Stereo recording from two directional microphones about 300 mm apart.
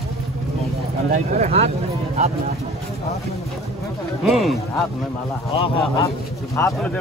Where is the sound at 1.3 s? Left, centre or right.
Right.